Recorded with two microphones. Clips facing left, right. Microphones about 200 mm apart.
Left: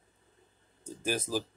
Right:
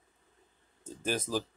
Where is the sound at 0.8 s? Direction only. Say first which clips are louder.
Even; 10° left (ahead or behind).